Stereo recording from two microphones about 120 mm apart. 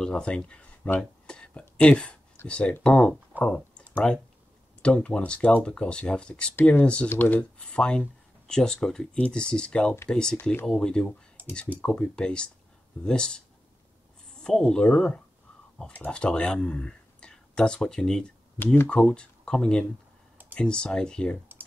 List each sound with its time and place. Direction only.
0.0 s speech: 5° left (ahead or behind)
4.8 s speech: 10° left (ahead or behind)
11.4 s a sound: 15° right (ahead or behind)
11.8 s speech: 10° left (ahead or behind)